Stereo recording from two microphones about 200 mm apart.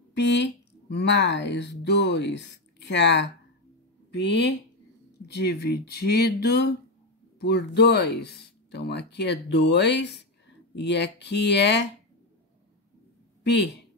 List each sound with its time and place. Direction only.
0.1 s speech: 60° left (ahead or behind)
5.3 s speech: 55° left (ahead or behind)
13.4 s a sound: 60° left (ahead or behind)